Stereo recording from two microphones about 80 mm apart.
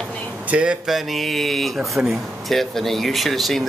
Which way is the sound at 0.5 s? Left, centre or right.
Centre.